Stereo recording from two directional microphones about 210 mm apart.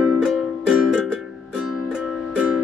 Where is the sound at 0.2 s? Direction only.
Centre (ahead or behind).